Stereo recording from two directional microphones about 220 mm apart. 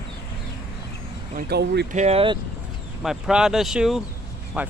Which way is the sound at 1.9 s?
30° right (ahead or behind).